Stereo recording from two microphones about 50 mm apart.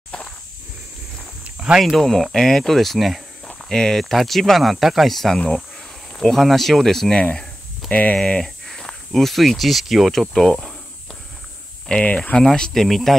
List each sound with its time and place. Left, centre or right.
1.4 s a sound: right
2.0 s speech: centre
3.5 s walk: centre
4.0 s speech: centre
7.9 s speech: left
8.6 s speech: centre
10.3 s speech: centre
12.0 s speech: left
12.4 s speech: centre